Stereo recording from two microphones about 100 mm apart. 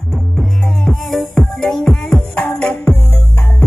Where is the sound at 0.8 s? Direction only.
Centre (ahead or behind).